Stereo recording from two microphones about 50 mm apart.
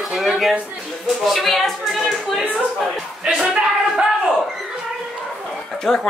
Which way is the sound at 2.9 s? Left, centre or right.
Centre.